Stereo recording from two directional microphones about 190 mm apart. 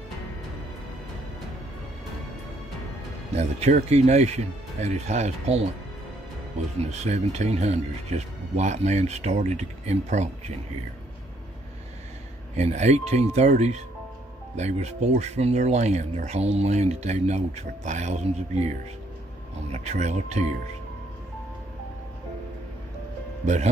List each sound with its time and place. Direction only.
3.3 s speech: 35° right (ahead or behind)
6.8 s speech: 35° right (ahead or behind)
12.5 s speech: 35° right (ahead or behind)
19.7 s speech: 35° right (ahead or behind)
23.4 s speech: 40° right (ahead or behind)